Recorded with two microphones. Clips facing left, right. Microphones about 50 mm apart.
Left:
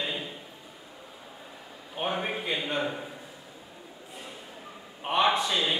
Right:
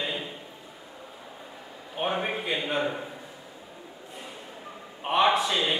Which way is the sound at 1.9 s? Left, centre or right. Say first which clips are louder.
Right 2 dB; centre.